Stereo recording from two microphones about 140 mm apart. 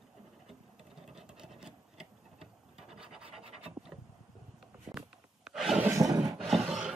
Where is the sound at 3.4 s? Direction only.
45° right (ahead or behind).